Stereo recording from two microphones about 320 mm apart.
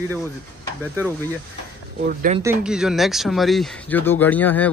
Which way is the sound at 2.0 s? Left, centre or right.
Right.